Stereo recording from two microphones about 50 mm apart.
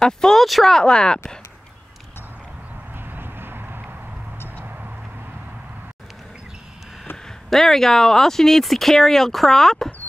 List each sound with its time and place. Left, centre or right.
0.0 s speech: centre
0.7 s speech: centre
3.1 s vehicle: right
7.4 s speech: centre